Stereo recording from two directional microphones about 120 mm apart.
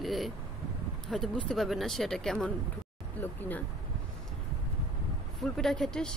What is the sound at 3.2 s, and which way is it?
Speech, 15° left (ahead or behind).